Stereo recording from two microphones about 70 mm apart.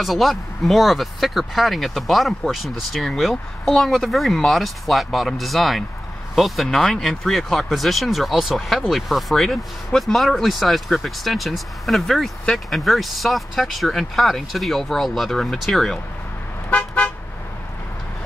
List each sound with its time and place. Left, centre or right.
0.0 s speech: centre
16.7 s toot: centre